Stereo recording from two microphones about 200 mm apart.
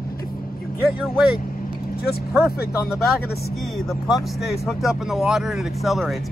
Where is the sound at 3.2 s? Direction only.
50° left (ahead or behind).